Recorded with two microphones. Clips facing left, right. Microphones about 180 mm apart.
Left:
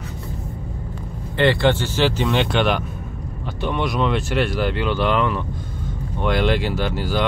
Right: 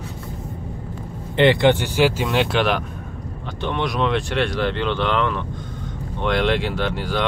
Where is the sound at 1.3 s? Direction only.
20° right (ahead or behind).